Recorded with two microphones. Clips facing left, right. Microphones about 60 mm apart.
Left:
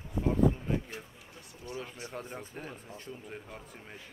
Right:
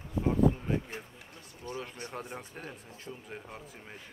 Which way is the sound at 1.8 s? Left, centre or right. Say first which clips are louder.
Left 1 dB; centre.